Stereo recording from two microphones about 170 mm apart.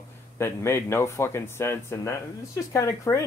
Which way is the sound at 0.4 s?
15° left (ahead or behind).